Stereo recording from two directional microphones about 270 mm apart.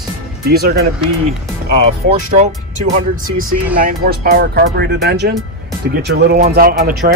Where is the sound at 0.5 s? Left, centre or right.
Right.